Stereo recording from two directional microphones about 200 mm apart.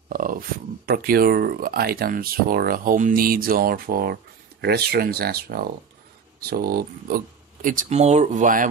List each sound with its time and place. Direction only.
0.1 s speech: 45° right (ahead or behind)